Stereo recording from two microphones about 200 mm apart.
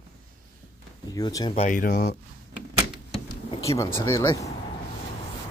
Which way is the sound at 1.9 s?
55° left (ahead or behind).